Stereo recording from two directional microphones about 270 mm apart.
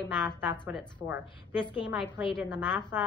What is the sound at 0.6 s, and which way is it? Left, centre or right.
A woman's voice, centre.